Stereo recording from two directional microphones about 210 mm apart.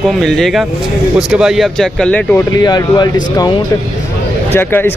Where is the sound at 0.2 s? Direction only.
Centre (ahead or behind).